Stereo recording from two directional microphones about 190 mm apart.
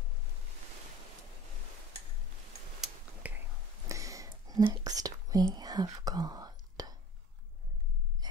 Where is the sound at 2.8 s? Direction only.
10° right (ahead or behind).